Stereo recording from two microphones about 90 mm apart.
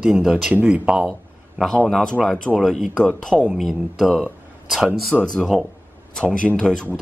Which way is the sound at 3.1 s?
10° left (ahead or behind).